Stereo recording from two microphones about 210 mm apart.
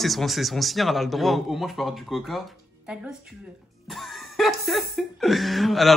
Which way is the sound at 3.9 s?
Centre (ahead or behind).